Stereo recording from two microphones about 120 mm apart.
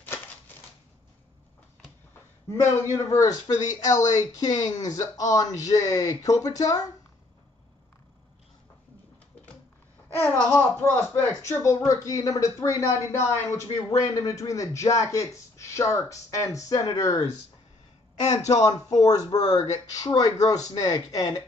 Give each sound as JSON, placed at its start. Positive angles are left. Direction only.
{"t": 2.5, "sound": "speech", "side_deg": 20}
{"t": 10.1, "sound": "speech", "side_deg": 15}
{"t": 18.2, "sound": "speech", "side_deg": 75}
{"t": 18.5, "sound": "speech", "side_deg": 30}